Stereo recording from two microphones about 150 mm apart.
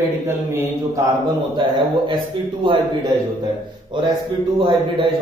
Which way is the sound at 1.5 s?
30° right (ahead or behind).